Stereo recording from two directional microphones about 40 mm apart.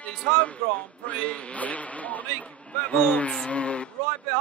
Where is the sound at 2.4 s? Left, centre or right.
Left.